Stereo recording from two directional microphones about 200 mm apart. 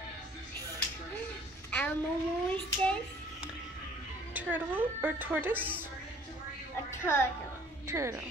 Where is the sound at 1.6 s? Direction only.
5° left (ahead or behind).